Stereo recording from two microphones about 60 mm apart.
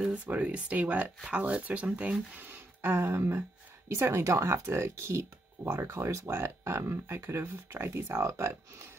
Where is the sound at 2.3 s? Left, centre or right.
Right.